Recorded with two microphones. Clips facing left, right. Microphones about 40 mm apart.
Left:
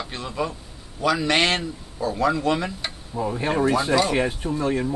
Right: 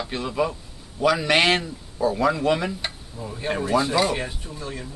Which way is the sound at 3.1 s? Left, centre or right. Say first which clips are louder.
Left 6 dB; left.